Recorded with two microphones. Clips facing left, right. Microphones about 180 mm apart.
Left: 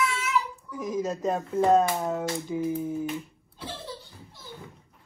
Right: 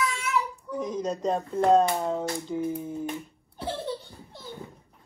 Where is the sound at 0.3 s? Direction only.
60° right (ahead or behind).